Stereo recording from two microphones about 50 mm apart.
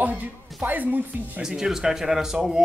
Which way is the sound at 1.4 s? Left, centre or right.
Centre.